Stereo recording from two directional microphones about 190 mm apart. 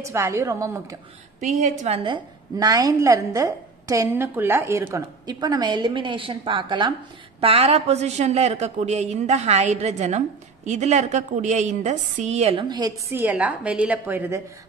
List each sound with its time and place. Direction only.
0.0 s a woman's voice: 15° right (ahead or behind)
1.4 s a woman's voice: 35° right (ahead or behind)
2.0 s a woman's voice: 20° right (ahead or behind)
13.1 s a woman's voice: 10° right (ahead or behind)